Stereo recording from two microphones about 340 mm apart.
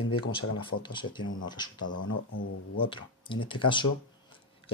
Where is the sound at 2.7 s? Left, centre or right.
Centre.